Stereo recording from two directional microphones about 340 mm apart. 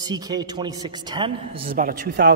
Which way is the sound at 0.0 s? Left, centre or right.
Centre.